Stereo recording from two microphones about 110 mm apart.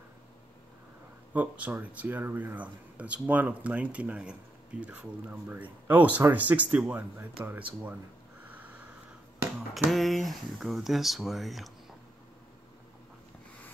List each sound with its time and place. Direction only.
1.3 s speech: 15° right (ahead or behind)
8.5 s sniff: 15° right (ahead or behind)
9.8 s speech: centre (ahead or behind)